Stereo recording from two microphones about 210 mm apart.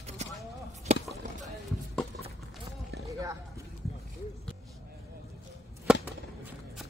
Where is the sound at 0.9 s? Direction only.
30° right (ahead or behind).